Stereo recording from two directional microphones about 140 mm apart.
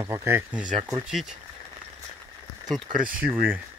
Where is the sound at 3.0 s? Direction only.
75° right (ahead or behind).